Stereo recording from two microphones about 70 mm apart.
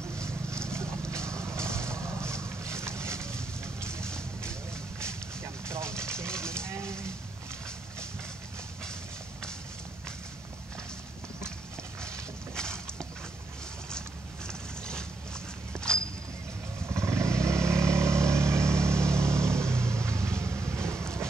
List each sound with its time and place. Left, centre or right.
0.2 s vehicle: right
5.0 s livestock: right
12.5 s a sound: centre
14.5 s boat: centre
15.7 s walk: centre
16.8 s vehicle: right